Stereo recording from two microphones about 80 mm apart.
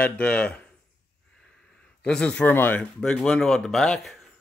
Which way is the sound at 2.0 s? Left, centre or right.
Centre.